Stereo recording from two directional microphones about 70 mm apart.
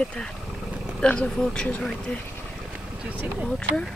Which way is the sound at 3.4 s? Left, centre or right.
Centre.